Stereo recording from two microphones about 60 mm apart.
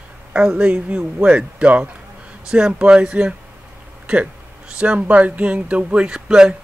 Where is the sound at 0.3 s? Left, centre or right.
Centre.